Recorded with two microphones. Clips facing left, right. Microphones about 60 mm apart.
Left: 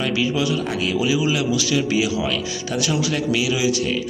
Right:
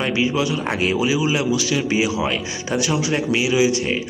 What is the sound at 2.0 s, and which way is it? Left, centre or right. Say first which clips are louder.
A man's voice: right 1 dB; right.